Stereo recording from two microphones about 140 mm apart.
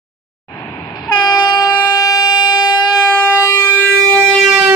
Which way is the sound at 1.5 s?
25° left (ahead or behind).